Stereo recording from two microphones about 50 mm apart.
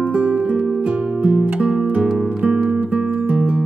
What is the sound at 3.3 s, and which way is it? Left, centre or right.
Music, right.